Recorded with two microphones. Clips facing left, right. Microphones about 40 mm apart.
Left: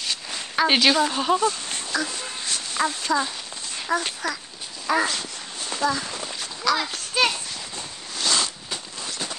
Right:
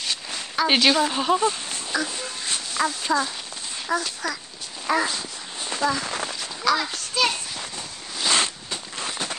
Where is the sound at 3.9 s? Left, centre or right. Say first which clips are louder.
Left 1 dB; centre.